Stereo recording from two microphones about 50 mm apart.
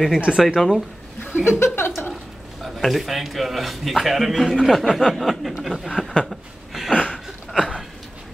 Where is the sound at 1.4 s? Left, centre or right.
Left.